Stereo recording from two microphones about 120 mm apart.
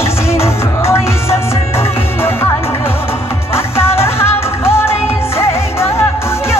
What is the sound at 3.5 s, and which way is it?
Music, 20° left (ahead or behind).